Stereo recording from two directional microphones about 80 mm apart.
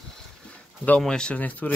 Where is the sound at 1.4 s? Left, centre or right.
Centre.